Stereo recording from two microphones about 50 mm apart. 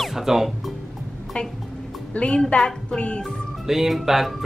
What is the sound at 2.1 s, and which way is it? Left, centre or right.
A woman's voice, left.